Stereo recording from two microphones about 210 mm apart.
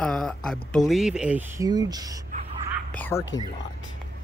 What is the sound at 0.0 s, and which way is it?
Speech, 5° left (ahead or behind).